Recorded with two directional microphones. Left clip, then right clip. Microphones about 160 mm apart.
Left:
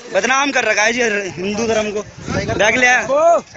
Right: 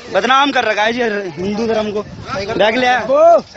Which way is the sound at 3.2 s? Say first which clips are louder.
Right 7 dB; 35° right (ahead or behind).